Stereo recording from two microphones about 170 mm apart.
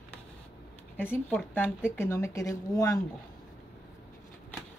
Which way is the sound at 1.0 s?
10° left (ahead or behind).